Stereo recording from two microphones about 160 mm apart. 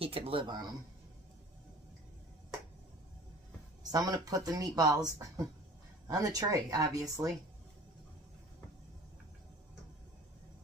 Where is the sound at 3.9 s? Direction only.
25° right (ahead or behind).